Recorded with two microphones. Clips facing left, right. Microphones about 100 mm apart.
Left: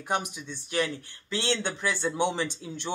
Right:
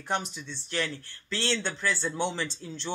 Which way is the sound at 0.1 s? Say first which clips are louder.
Left 1 dB; 15° left (ahead or behind).